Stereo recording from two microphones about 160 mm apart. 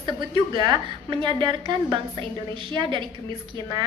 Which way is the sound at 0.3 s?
30° right (ahead or behind).